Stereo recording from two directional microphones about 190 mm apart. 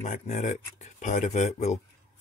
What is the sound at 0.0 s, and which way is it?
Speech, 40° left (ahead or behind).